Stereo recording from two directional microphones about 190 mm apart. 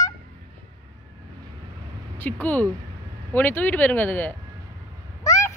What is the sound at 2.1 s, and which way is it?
Speech, 10° left (ahead or behind).